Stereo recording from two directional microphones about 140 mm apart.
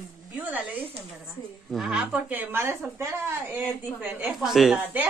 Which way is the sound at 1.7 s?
5° right (ahead or behind).